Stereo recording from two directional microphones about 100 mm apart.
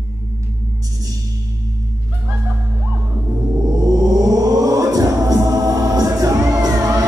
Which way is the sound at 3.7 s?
40° right (ahead or behind).